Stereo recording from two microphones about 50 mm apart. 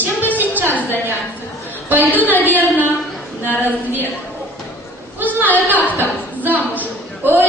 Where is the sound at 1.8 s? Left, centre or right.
Right.